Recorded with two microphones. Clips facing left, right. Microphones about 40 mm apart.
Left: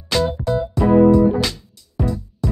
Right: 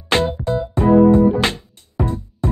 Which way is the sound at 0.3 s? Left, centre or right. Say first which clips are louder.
Even; right.